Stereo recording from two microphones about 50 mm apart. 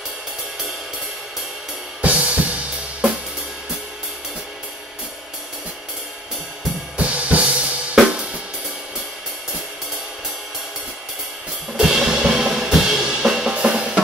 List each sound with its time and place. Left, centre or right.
2.0 s drum kit: right
7.0 s drum kit: right
11.7 s drum kit: centre
13.6 s drum: centre